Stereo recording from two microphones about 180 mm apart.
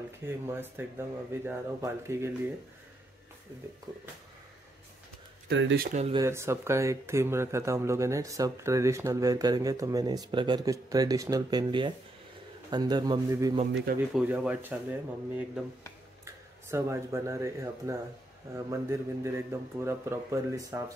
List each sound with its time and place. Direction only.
0.3 s a man's voice: 10° right (ahead or behind)
5.5 s speech: 90° right
5.9 s speech: 40° right (ahead or behind)
6.1 s a man's voice: 15° right (ahead or behind)